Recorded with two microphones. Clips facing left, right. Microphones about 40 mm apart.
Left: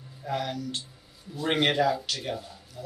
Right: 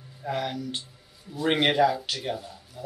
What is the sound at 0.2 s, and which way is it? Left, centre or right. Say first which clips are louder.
Speech: right 1 dB; centre.